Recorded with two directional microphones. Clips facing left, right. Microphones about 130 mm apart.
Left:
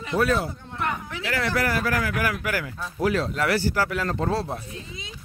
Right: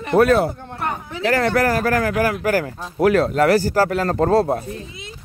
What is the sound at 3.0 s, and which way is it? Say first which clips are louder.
Speech: right 8 dB; 55° right (ahead or behind).